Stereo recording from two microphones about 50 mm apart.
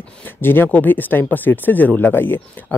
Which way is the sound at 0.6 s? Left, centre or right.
Left.